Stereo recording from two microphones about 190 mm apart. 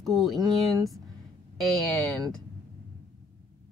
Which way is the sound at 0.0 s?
Centre (ahead or behind).